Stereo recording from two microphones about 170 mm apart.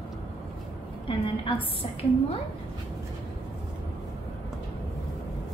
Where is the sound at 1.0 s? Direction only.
30° left (ahead or behind).